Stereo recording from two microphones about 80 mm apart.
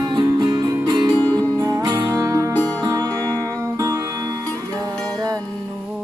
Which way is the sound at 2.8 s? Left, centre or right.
Right.